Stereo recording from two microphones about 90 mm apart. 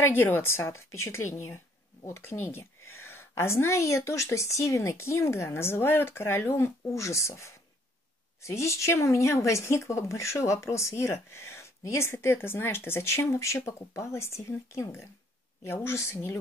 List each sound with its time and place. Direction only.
0.0 s a woman's voice: 25° left (ahead or behind)